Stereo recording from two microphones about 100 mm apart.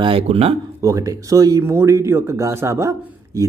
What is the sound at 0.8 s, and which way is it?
Speech, 35° right (ahead or behind).